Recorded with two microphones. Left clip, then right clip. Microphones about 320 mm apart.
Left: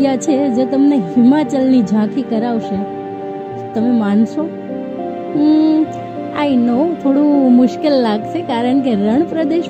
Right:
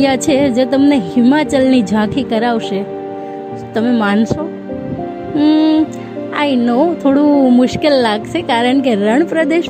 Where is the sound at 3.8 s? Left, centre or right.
Right.